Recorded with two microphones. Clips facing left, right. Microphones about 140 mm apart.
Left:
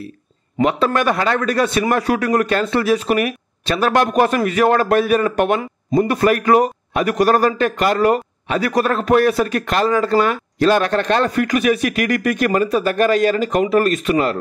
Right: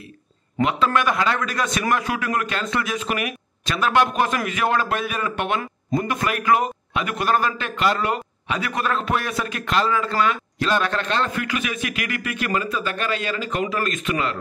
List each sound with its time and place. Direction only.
0.6 s a man's voice: 35° left (ahead or behind)